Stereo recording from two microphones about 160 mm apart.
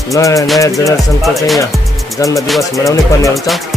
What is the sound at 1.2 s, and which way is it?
Music, centre (ahead or behind).